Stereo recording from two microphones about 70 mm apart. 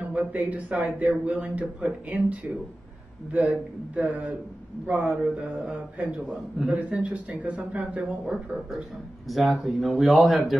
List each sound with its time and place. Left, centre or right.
0.1 s speech: right
3.9 s speech: right
6.2 s speech: centre
6.8 s speech: centre